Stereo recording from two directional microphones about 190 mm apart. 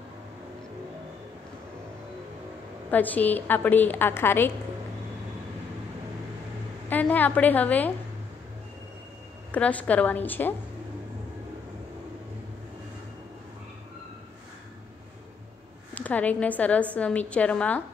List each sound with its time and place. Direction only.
2.9 s a woman's voice: 10° left (ahead or behind)
6.9 s a woman's voice: 10° left (ahead or behind)
9.5 s a woman's voice: 5° left (ahead or behind)
15.9 s a woman's voice: 10° left (ahead or behind)